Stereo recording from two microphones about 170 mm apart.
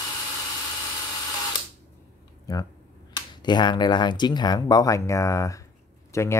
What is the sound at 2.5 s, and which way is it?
Speech, 20° left (ahead or behind).